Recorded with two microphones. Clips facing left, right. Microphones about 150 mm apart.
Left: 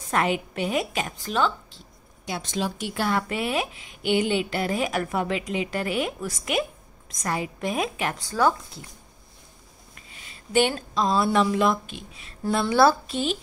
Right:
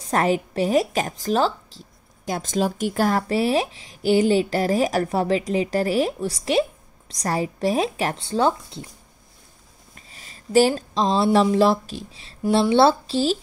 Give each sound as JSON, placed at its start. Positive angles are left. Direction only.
{"t": 0.1, "sound": "speech", "side_deg": -35}
{"t": 9.9, "sound": "a sound", "side_deg": -35}
{"t": 11.4, "sound": "speech", "side_deg": -35}